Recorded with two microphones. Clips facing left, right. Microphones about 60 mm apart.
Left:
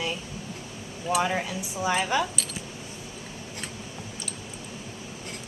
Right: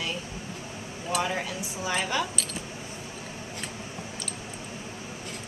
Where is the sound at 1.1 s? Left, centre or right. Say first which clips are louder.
Left 3 dB; centre.